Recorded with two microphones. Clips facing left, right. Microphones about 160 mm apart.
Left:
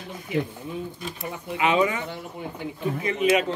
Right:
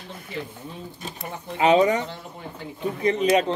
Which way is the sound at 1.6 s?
40° right (ahead or behind).